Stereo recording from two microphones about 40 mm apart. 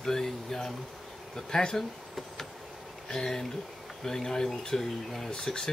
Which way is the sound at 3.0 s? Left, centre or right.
Centre.